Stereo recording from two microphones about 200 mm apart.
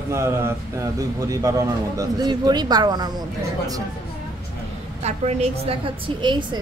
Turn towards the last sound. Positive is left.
turn(degrees=-25)  # may be behind; listen again after turning